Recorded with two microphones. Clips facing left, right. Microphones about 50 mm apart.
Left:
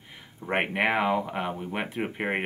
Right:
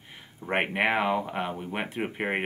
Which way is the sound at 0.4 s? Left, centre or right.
Centre.